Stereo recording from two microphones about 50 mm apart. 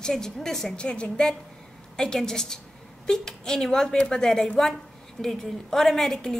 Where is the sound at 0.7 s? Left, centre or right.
Left.